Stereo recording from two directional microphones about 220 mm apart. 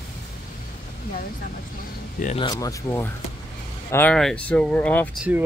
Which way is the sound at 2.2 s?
25° left (ahead or behind).